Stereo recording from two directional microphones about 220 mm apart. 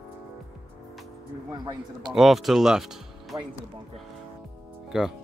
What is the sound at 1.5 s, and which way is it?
Speech, 20° right (ahead or behind).